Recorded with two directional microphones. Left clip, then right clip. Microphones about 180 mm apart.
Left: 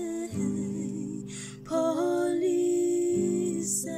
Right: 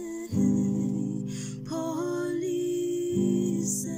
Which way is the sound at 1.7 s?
5° right (ahead or behind).